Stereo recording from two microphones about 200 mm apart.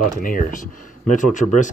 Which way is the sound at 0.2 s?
45° left (ahead or behind).